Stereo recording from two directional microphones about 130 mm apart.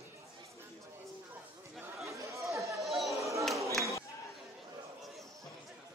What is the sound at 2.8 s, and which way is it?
Chatter, centre (ahead or behind).